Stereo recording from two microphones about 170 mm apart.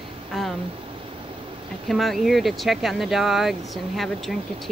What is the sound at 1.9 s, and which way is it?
Speech, centre (ahead or behind).